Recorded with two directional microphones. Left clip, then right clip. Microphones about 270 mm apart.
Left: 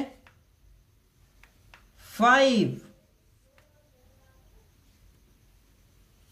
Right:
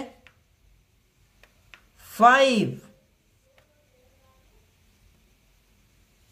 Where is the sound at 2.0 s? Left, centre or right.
Centre.